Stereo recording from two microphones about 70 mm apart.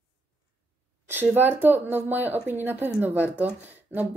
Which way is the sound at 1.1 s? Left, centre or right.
Right.